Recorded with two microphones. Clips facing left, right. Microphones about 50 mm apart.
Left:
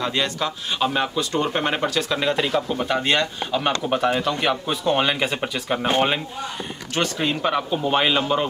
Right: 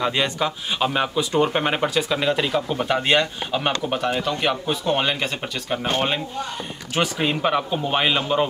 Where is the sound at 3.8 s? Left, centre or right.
Centre.